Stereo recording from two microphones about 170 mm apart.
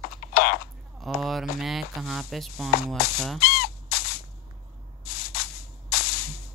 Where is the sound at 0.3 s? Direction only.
60° left (ahead or behind).